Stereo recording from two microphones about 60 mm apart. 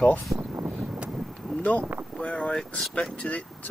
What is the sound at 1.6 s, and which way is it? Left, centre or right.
Speech, left.